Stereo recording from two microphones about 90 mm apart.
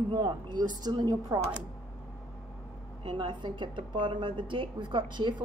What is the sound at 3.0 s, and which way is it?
A woman's voice, 60° right (ahead or behind).